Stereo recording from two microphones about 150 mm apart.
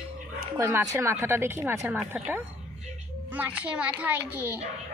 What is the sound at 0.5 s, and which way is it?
A woman's voice, 20° right (ahead or behind).